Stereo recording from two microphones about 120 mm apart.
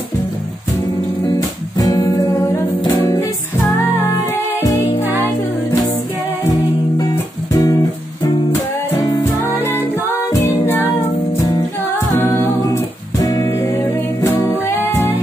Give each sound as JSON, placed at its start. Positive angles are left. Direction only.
{"t": 1.3, "sound": "music", "side_deg": 30}
{"t": 4.6, "sound": "music", "side_deg": 20}
{"t": 7.0, "sound": "music", "side_deg": 30}
{"t": 10.3, "sound": "music", "side_deg": 20}
{"t": 12.3, "sound": "music", "side_deg": 30}
{"t": 13.5, "sound": "music", "side_deg": 20}